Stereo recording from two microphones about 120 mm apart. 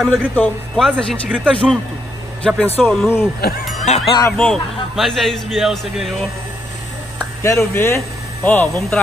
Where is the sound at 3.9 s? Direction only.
75° left (ahead or behind).